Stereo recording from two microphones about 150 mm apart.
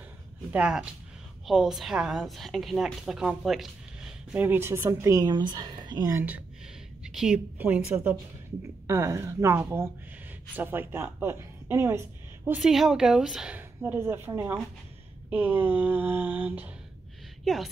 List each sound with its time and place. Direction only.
0.5 s a woman's voice: 5° right (ahead or behind); by 6.1 s 30° right (ahead or behind)
6.1 s a woman's voice: 10° right (ahead or behind)
12.4 s a woman's voice: 5° right (ahead or behind)